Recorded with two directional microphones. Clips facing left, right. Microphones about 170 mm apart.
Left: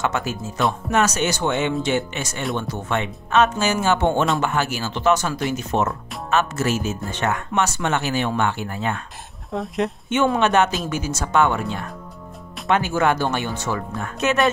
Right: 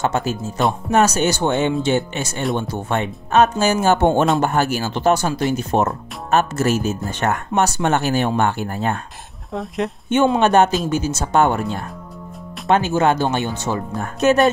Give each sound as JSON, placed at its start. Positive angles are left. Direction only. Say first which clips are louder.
{"t": 0.0, "sound": "speech", "louder": "right 3 dB", "side_deg": -30}
{"t": 9.5, "sound": "speech", "louder": "even", "side_deg": 0}
{"t": 10.4, "sound": "speech", "louder": "right 4 dB", "side_deg": -35}
{"t": 10.9, "sound": "speech", "louder": "right 5 dB", "side_deg": -25}
{"t": 11.3, "sound": "speech", "louder": "right 2 dB", "side_deg": -40}
{"t": 12.6, "sound": "speech", "louder": "right 3 dB", "side_deg": -30}
{"t": 13.9, "sound": "speech", "louder": "right 7 dB", "side_deg": -40}